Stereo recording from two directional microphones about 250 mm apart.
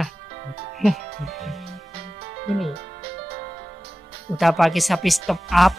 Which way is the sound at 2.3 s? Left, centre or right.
Right.